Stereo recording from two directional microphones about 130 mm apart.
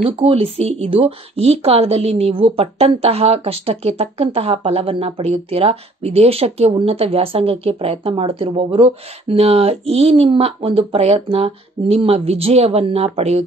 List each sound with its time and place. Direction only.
0.0 s speech: 45° right (ahead or behind)